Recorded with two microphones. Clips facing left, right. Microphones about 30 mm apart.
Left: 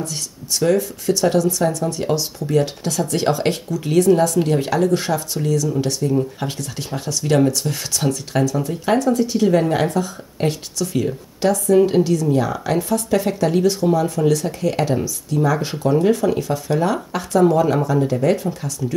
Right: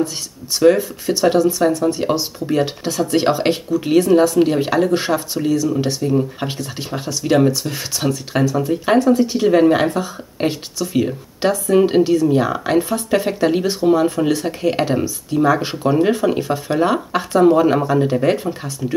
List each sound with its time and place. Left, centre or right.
0.6 s speech: right